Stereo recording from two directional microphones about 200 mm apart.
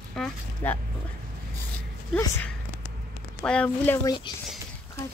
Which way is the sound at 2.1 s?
10° left (ahead or behind).